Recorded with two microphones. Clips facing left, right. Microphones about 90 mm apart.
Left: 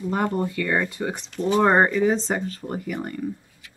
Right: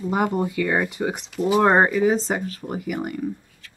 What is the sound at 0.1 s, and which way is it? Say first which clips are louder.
Speech: right 2 dB; 10° right (ahead or behind).